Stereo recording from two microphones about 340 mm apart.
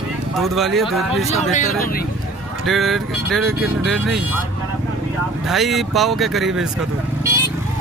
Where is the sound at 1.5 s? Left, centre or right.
Left.